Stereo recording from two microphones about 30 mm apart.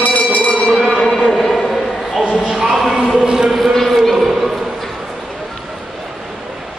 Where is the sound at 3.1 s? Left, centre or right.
Right.